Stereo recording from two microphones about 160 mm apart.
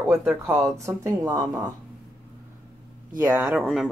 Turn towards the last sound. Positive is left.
turn(degrees=-5)  # may be behind; listen again after turning